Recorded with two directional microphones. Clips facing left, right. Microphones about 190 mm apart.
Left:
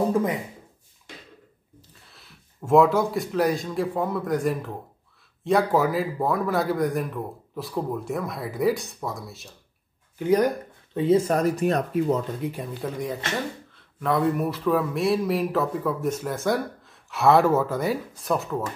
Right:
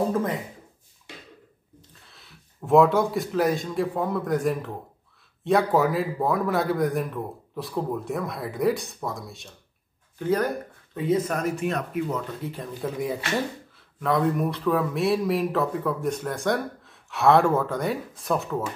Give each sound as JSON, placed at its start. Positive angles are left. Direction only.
{"t": 1.8, "sound": "speech", "side_deg": 0}
{"t": 10.1, "sound": "speech", "side_deg": 15}
{"t": 11.0, "sound": "speech", "side_deg": 30}
{"t": 12.4, "sound": "speech", "side_deg": 15}
{"t": 12.8, "sound": "speech", "side_deg": -5}